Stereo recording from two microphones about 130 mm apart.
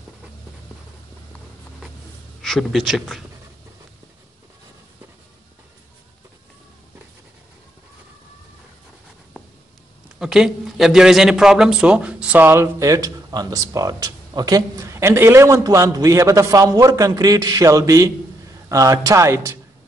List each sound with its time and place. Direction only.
2.4 s speech: centre (ahead or behind)
10.1 s a man's voice: 5° right (ahead or behind); by 19.5 s 20° right (ahead or behind)